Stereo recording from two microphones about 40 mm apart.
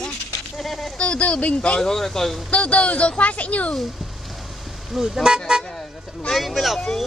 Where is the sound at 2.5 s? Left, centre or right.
Left.